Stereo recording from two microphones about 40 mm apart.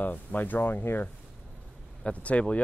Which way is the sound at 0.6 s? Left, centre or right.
Left.